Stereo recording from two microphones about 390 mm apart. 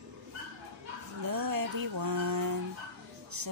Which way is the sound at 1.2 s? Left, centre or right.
Right.